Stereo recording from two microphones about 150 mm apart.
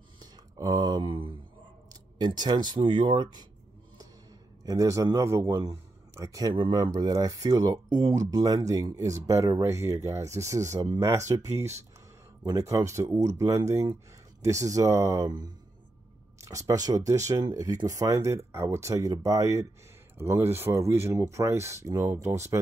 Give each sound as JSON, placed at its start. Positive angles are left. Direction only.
{"t": 0.2, "sound": "a sound", "side_deg": -25}
{"t": 1.9, "sound": "speech", "side_deg": -30}
{"t": 4.6, "sound": "a man's voice", "side_deg": -20}